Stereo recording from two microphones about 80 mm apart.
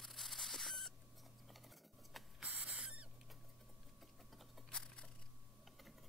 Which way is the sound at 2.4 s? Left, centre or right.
Centre.